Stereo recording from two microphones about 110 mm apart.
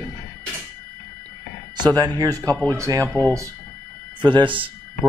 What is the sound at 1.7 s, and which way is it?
Speech, 40° right (ahead or behind).